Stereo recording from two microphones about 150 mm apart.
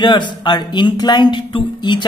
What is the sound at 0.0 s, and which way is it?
Speech, 30° left (ahead or behind).